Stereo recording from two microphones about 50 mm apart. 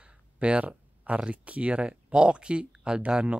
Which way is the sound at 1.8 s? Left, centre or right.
Centre.